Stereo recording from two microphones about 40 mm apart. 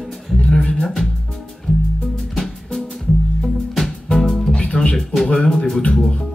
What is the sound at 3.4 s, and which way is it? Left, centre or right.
Music, centre.